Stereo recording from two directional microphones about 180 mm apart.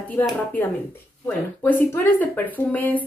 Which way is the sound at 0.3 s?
5° left (ahead or behind).